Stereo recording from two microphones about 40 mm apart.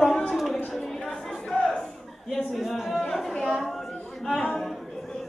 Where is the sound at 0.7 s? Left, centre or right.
Centre.